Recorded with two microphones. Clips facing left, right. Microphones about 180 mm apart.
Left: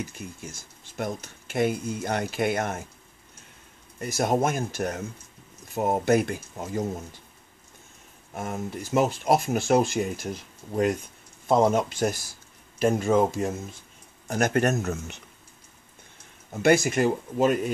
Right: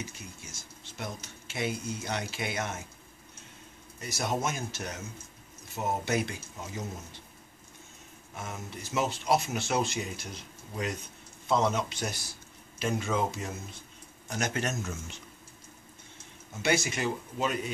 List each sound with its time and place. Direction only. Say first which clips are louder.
0.0 s speech: left 7 dB; 55° left (ahead or behind)
4.0 s speech: left 8 dB; 55° left (ahead or behind)
8.4 s speech: left 8 dB; 50° left (ahead or behind)
16.5 s speech: left 9 dB; 50° left (ahead or behind)